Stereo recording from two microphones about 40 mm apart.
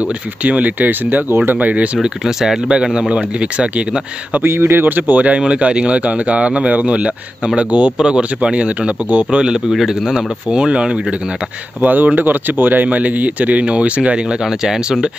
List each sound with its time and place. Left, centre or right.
0.4 s speech: right
2.0 s speech: centre
2.7 s speech: centre
4.4 s speech: right
5.5 s speech: right
9.8 s speech: centre
11.8 s speech: right
14.4 s speech: centre